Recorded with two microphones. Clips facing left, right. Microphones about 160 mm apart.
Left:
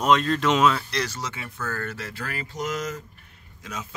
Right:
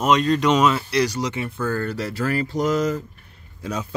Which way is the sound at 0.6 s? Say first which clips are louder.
Right 3 dB; 15° right (ahead or behind).